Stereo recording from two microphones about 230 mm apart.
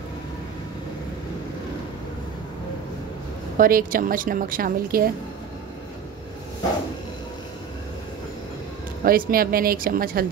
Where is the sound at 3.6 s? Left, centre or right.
Right.